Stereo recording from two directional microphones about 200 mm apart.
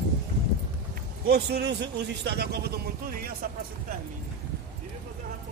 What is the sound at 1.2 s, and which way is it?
A man's voice, 55° right (ahead or behind).